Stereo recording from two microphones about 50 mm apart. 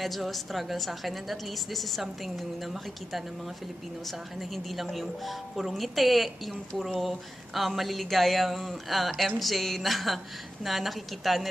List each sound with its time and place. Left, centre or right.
0.0 s a woman's voice: centre